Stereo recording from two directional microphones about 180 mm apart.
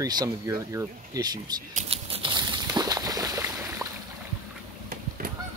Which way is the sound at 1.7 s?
35° right (ahead or behind).